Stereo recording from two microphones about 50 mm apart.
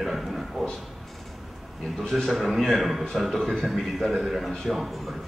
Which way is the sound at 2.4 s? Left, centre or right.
Centre.